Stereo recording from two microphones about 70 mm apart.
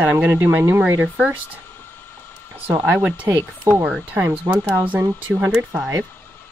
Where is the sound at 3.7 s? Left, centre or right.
Right; by 5.9 s centre.